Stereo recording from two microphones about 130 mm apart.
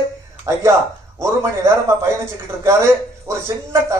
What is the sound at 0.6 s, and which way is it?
A man's voice, 20° right (ahead or behind).